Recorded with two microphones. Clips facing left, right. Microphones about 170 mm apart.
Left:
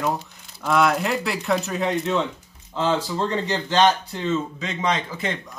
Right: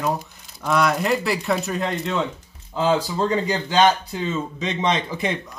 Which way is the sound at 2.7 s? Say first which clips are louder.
Right 2 dB; 10° right (ahead or behind).